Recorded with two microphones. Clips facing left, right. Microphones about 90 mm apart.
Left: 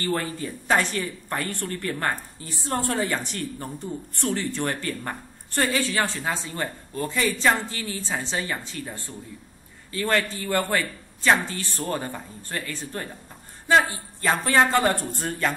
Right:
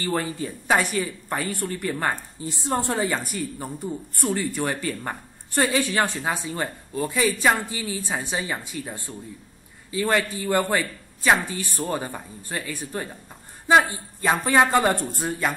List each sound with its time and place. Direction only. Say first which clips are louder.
0.0 s speech: right 1 dB; 15° right (ahead or behind)
3.0 s a man's voice: right 1 dB; 5° right (ahead or behind)